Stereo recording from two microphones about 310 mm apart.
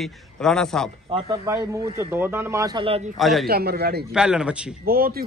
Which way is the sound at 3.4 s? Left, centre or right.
Right.